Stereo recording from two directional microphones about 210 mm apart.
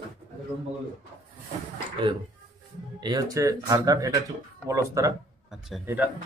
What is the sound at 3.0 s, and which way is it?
Speech, 20° right (ahead or behind).